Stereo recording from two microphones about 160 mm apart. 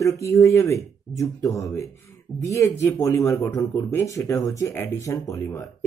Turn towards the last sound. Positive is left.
turn(degrees=20)  # may be behind; listen again after turning